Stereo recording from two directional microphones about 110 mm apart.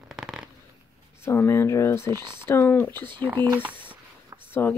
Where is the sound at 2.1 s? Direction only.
45° right (ahead or behind).